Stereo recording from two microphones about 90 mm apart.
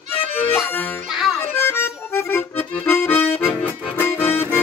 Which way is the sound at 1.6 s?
25° left (ahead or behind).